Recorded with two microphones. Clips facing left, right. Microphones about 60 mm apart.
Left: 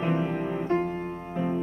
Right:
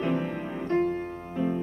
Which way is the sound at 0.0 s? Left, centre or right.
Centre.